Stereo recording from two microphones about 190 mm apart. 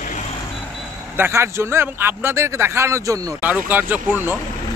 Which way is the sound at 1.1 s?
10° right (ahead or behind).